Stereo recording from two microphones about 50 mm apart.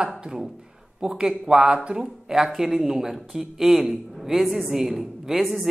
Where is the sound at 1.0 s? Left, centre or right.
Centre.